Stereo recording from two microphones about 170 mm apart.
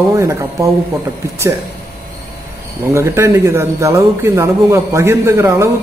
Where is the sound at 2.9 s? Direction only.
15° right (ahead or behind).